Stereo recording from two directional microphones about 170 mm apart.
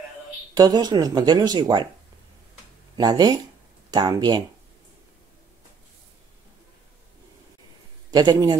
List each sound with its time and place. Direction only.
0.6 s speech: 25° right (ahead or behind)
3.0 s speech: 25° right (ahead or behind)
8.1 s speech: 25° right (ahead or behind)